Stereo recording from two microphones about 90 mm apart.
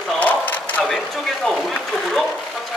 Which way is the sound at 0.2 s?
20° left (ahead or behind).